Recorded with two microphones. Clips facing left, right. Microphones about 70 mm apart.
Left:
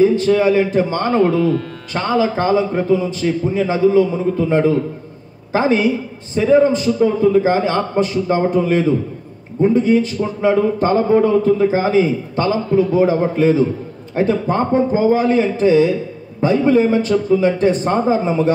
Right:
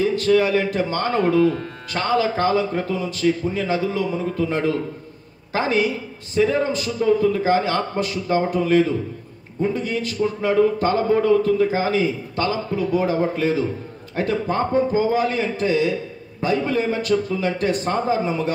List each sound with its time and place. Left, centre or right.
0.0 s a man's voice: left